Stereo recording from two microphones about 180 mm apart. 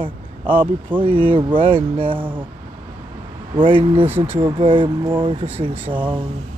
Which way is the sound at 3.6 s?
30° right (ahead or behind).